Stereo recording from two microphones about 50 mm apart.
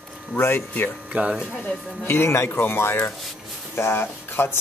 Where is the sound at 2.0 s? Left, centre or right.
Left.